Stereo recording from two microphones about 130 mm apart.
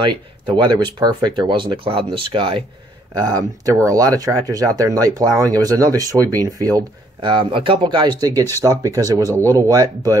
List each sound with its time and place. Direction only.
0.0 s speech: 40° right (ahead or behind)
3.2 s speech: 30° right (ahead or behind)
7.2 s speech: 40° right (ahead or behind)
8.6 s speech: 25° right (ahead or behind)